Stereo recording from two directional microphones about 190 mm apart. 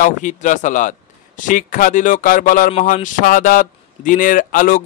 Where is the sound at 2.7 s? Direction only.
30° left (ahead or behind).